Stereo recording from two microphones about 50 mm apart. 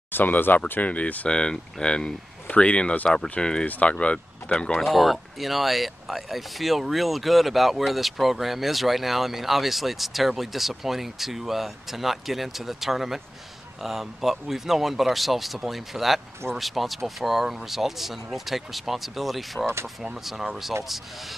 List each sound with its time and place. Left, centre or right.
0.1 s speech: left
1.3 s speech: centre
3.6 s speech: left
4.8 s speech: centre
19.6 s speech: right
20.2 s speech: centre